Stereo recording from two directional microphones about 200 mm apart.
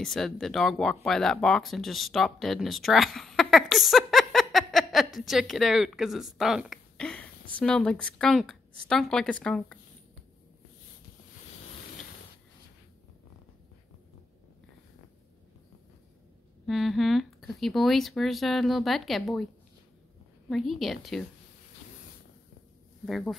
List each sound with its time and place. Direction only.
0.0 s speech: centre (ahead or behind)
16.6 s speech: centre (ahead or behind)
20.4 s speech: centre (ahead or behind)
23.0 s speech: centre (ahead or behind)